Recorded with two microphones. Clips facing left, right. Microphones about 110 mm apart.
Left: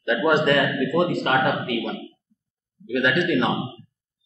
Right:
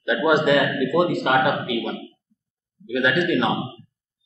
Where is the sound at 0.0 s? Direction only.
Centre (ahead or behind).